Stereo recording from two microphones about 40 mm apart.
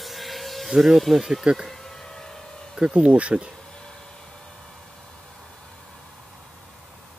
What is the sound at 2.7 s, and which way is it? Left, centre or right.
Speech, right.